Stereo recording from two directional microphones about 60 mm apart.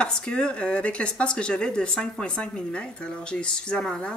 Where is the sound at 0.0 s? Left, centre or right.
Centre.